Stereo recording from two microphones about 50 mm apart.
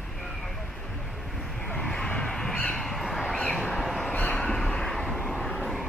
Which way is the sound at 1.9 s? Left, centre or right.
Centre.